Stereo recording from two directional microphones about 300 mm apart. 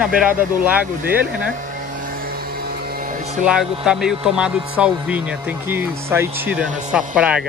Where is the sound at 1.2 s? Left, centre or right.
Right.